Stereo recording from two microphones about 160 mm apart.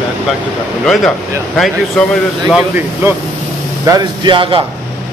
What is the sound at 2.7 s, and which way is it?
Speech, 15° right (ahead or behind).